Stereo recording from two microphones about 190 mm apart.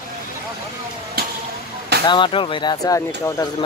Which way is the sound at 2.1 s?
25° left (ahead or behind).